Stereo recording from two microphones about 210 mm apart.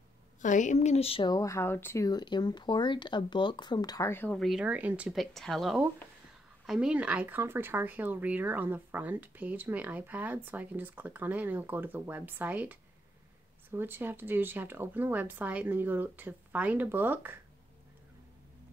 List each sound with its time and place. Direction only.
0.4 s speech: 35° left (ahead or behind); by 17.4 s 10° right (ahead or behind)